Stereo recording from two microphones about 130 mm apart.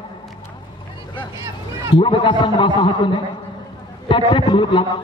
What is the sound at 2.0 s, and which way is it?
A man's voice, 40° left (ahead or behind).